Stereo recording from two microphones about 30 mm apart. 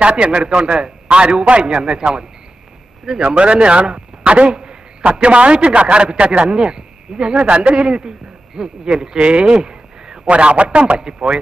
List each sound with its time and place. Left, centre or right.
0.0 s a man's voice: right
3.2 s a man's voice: right
6.4 s a man's voice: right
8.5 s speech: right
9.2 s a man's voice: right
9.7 s a sound: right
10.2 s a man's voice: right